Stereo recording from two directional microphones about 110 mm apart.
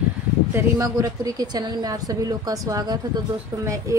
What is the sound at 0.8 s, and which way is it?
A woman's voice, 30° right (ahead or behind).